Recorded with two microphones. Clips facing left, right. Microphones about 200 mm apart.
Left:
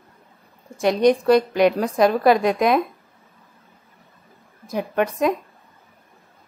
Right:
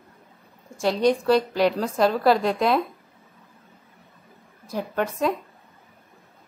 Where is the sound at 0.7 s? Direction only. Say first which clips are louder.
Left 4 dB; 20° left (ahead or behind).